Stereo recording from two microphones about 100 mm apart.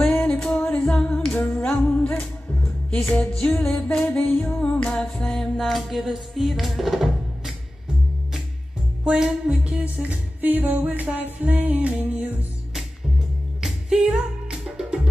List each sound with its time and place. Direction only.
0.0 s music: 5° left (ahead or behind)
0.7 s a capella: 10° left (ahead or behind)
3.1 s music: 15° left (ahead or behind)
3.5 s music: 5° left (ahead or behind)
9.0 s music: 5° right (ahead or behind)
13.6 s music: 5° right (ahead or behind)